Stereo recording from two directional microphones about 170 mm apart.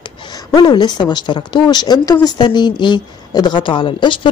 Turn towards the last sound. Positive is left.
turn(degrees=30)  # may be behind; listen again after turning